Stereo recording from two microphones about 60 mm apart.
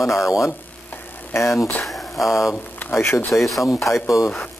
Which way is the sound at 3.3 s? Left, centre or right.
Centre.